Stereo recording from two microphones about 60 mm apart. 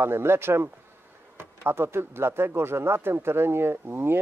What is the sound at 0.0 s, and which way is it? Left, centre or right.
Speech, right.